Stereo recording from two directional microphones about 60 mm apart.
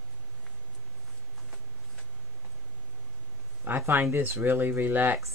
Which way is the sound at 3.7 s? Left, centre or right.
Right.